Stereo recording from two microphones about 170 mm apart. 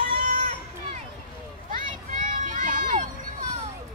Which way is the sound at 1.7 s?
50° right (ahead or behind).